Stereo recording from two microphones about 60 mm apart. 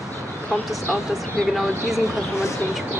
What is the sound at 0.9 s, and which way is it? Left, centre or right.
Speech, centre.